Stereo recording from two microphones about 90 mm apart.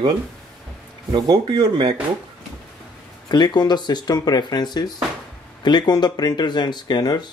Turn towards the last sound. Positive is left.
turn(degrees=50)  # may be behind; listen again after turning